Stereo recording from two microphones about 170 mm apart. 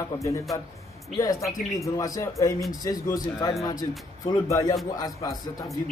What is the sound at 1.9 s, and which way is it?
A man's voice, 20° left (ahead or behind).